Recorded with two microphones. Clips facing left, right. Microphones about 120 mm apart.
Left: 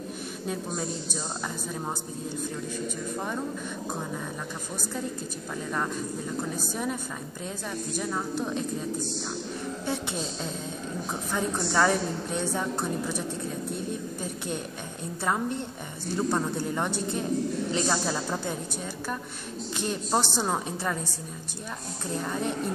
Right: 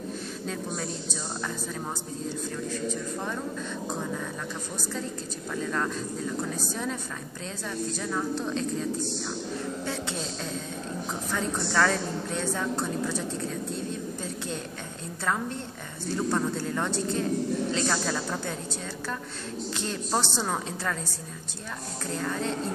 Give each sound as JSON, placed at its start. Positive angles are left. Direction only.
{"t": 6.7, "sound": "a woman's voice", "side_deg": 10}
{"t": 8.0, "sound": "a woman's voice", "side_deg": 15}
{"t": 11.3, "sound": "a woman's voice", "side_deg": 15}
{"t": 15.2, "sound": "a woman's voice", "side_deg": 15}
{"t": 19.8, "sound": "a woman's voice", "side_deg": 15}
{"t": 22.1, "sound": "a woman's voice", "side_deg": 15}